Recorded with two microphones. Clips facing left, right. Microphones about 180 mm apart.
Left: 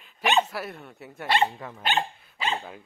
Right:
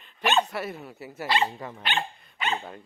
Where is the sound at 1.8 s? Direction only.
40° left (ahead or behind).